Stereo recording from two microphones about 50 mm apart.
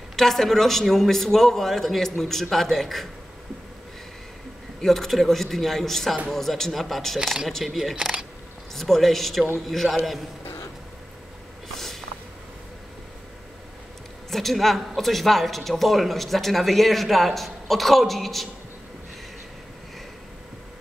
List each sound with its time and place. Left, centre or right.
0.1 s speech: centre
4.8 s speech: centre
8.0 s speech: centre
8.7 s speech: centre
11.7 s a sound: centre
14.3 s speech: centre